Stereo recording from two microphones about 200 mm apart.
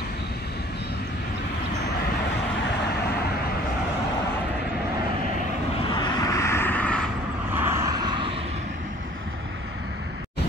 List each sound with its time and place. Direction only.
5.9 s vehicle: 20° left (ahead or behind)
7.5 s vehicle: 10° right (ahead or behind)